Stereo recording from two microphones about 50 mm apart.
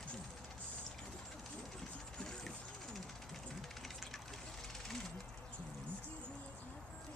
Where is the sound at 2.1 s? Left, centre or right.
Centre.